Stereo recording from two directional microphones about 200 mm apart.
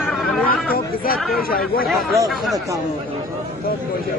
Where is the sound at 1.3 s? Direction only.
50° left (ahead or behind).